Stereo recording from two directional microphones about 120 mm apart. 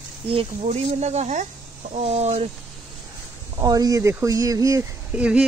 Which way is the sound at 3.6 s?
30° right (ahead or behind).